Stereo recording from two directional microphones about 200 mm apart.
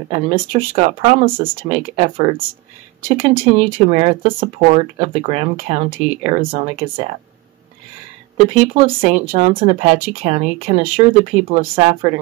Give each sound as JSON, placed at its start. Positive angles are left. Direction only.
{"t": 0.1, "sound": "speech", "side_deg": -25}
{"t": 2.0, "sound": "speech", "side_deg": -25}
{"t": 3.4, "sound": "speech", "side_deg": -30}
{"t": 9.0, "sound": "speech", "side_deg": -25}